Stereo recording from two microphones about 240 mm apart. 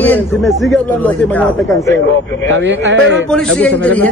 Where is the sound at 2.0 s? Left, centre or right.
Left.